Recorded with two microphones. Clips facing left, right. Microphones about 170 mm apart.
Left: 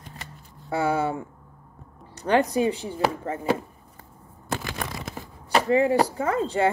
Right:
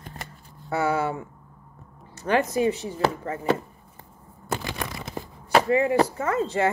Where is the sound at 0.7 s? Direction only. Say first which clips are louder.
Even; 30° left (ahead or behind).